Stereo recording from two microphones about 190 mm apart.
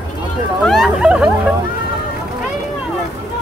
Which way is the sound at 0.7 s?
Centre (ahead or behind).